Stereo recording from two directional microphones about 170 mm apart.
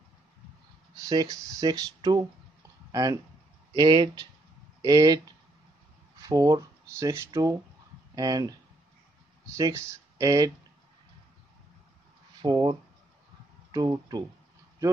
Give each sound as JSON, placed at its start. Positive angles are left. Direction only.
{"t": 0.9, "sound": "speech", "side_deg": -20}
{"t": 6.2, "sound": "speech", "side_deg": -20}
{"t": 9.6, "sound": "speech", "side_deg": -15}
{"t": 12.4, "sound": "speech", "side_deg": -25}